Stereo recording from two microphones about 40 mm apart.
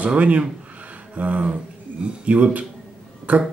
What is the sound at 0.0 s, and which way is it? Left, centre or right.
Speech, right.